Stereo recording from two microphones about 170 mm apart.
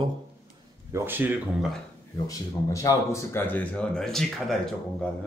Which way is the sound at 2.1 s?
20° left (ahead or behind).